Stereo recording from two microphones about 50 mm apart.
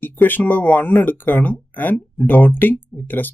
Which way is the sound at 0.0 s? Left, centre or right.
Left.